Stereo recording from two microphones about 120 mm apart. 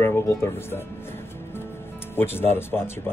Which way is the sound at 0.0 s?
20° left (ahead or behind).